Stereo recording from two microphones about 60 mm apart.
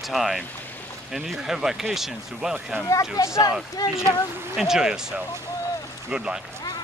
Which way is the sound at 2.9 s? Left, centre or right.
Left.